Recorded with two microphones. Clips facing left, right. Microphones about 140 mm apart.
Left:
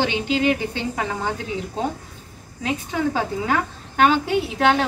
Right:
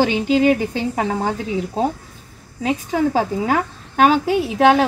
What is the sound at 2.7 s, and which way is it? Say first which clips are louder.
A woman's voice: right 4 dB; 35° right (ahead or behind).